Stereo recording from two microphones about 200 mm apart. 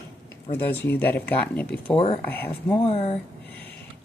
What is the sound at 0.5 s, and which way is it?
Speech, 10° left (ahead or behind).